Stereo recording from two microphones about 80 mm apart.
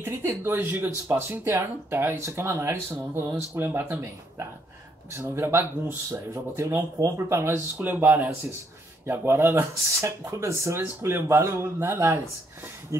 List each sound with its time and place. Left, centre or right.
0.4 s speech: right